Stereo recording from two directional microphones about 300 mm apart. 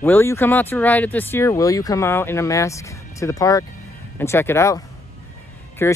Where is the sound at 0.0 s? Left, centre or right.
Centre.